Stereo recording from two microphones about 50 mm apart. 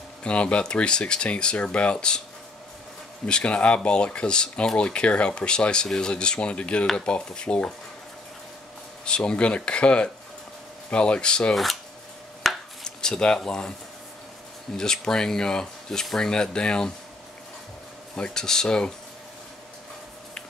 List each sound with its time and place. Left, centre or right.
0.2 s speech: left
3.3 s speech: left
9.0 s speech: centre
11.5 s speech: centre
12.4 s a sound: centre
13.4 s speech: centre
14.8 s speech: centre
18.1 s speech: centre